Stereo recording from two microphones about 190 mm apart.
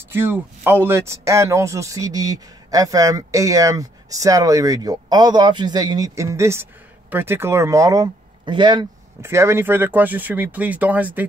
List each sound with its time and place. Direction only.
0.1 s speech: 10° right (ahead or behind)